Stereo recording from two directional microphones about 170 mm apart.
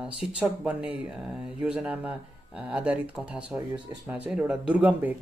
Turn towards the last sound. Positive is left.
turn(degrees=-10)  # may be behind; listen again after turning